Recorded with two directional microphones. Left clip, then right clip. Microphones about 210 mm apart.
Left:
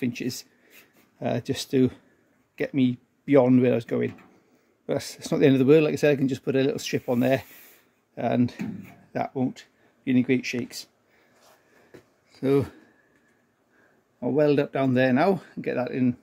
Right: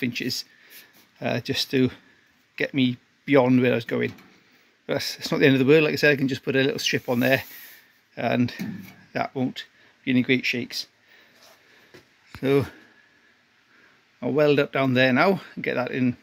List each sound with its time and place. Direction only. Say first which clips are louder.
0.0 s speech: right 3 dB; 5° left (ahead or behind)
12.4 s speech: right 1 dB; centre (ahead or behind)
14.2 s speech: right 2 dB; centre (ahead or behind)